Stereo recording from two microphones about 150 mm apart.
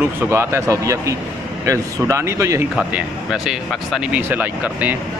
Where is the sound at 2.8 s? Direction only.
5° right (ahead or behind).